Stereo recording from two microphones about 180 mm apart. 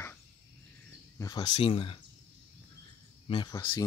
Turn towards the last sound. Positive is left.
turn(degrees=25)  # may be behind; listen again after turning